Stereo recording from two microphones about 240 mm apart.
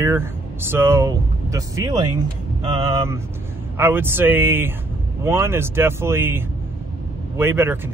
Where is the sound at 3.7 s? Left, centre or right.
Centre.